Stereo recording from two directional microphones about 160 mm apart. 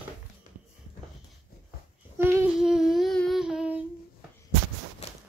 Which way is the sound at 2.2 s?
15° right (ahead or behind).